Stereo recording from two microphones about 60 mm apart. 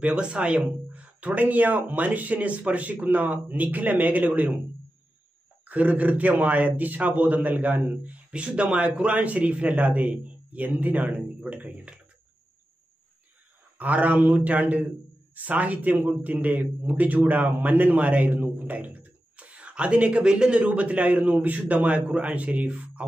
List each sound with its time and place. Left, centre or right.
0.0 s a man's voice: centre
5.7 s a man's voice: right
13.7 s a man's voice: right